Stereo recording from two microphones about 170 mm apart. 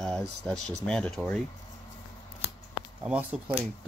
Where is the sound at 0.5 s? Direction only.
5° left (ahead or behind).